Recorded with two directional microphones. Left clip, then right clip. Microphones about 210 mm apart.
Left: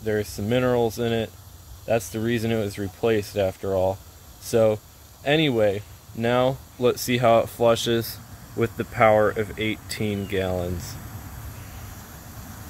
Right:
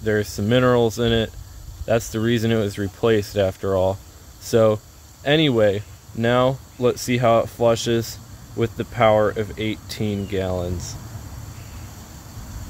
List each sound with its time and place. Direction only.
0.0 s speech: 20° right (ahead or behind); by 10.6 s 5° right (ahead or behind)